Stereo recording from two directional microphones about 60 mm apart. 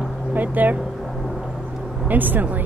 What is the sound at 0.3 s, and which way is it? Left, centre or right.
Speech, right.